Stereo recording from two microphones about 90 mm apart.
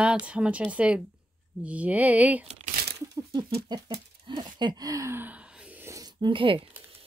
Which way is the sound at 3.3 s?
55° right (ahead or behind).